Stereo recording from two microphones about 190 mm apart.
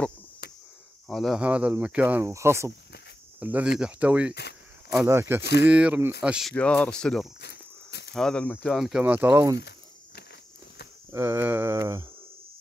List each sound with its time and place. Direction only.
1.0 s speech: centre (ahead or behind)
4.3 s a sound: 60° left (ahead or behind)
5.0 s speech: 15° right (ahead or behind)
5.4 s speech: 60° left (ahead or behind)
5.7 s speech: 5° right (ahead or behind)
6.5 s speech: 5° left (ahead or behind)
7.4 s cricket: 60° left (ahead or behind)
8.1 s speech: 5° left (ahead or behind); by 9.6 s 15° right (ahead or behind)
9.6 s snake: 60° left (ahead or behind)
11.1 s speech: 15° right (ahead or behind)